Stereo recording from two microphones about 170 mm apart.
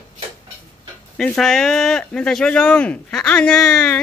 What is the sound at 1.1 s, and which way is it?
Speech, 5° left (ahead or behind).